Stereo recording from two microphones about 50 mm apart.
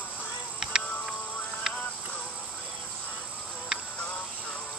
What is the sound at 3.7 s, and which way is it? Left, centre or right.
Insect, centre.